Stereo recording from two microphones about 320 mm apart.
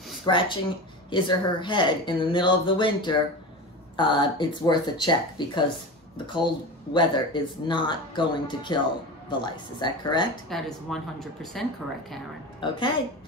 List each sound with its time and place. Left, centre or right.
0.2 s speech: centre
10.5 s speech: centre
12.5 s speech: centre